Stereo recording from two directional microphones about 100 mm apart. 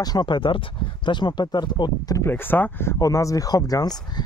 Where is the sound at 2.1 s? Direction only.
25° left (ahead or behind).